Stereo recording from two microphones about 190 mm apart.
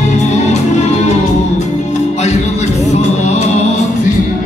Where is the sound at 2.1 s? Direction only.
35° left (ahead or behind).